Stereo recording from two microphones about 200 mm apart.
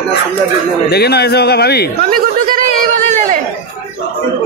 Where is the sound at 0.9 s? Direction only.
55° left (ahead or behind).